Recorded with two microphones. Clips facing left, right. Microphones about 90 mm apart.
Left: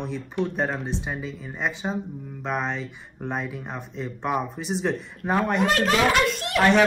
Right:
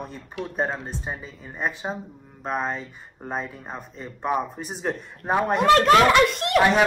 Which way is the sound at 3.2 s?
5° right (ahead or behind).